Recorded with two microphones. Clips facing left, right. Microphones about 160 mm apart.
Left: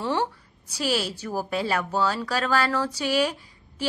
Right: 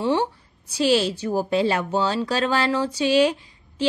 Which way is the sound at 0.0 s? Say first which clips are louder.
Right 4 dB; 20° right (ahead or behind).